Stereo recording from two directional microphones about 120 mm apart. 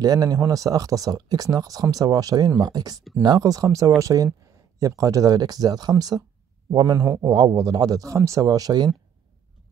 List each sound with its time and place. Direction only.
0.0 s speech: 30° right (ahead or behind)